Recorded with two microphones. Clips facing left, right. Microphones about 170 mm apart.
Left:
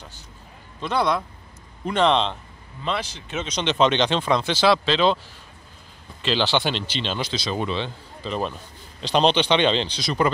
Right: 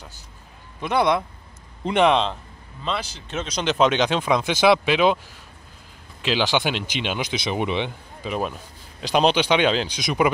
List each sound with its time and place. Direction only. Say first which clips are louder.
0.7 s speech: right 2 dB; 15° right (ahead or behind)
2.8 s speech: left 1 dB; 5° left (ahead or behind)
6.2 s speech: even; 10° right (ahead or behind)